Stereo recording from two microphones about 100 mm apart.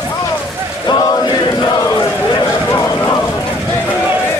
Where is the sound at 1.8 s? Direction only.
40° left (ahead or behind).